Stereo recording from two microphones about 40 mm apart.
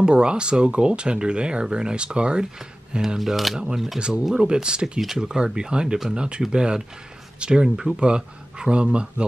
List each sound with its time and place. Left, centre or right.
0.0 s speech: right
3.2 s speech: centre
3.5 s speech: centre
5.0 s speech: centre
5.3 s speech: right